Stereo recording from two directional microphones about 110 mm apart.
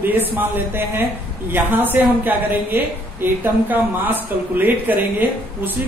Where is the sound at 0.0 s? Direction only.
15° right (ahead or behind).